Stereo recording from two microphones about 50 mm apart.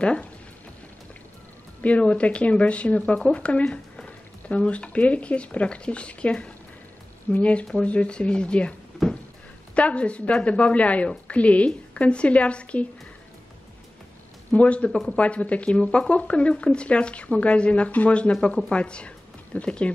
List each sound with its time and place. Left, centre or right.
0.0 s speech: left
1.8 s speech: left
9.8 s speech: left
14.5 s a woman's voice: left